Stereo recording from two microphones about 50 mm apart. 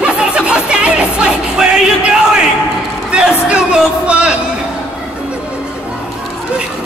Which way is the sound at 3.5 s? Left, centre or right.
Right.